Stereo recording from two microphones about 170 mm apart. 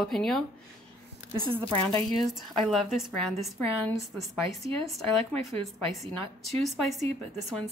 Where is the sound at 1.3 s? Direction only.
30° right (ahead or behind).